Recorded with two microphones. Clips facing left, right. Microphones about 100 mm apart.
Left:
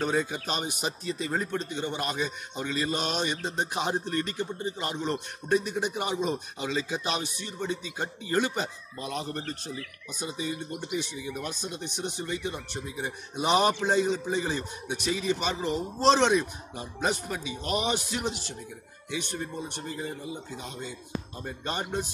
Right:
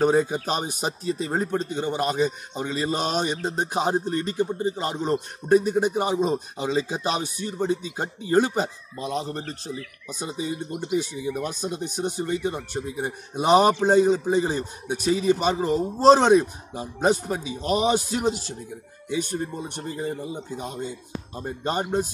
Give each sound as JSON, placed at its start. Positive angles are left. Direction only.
{"t": 0.0, "sound": "a man's voice", "side_deg": -35}
{"t": 11.1, "sound": "a man's voice", "side_deg": -30}